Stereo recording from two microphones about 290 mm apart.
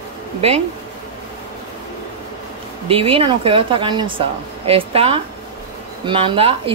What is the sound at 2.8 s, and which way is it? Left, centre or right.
A woman's voice, centre.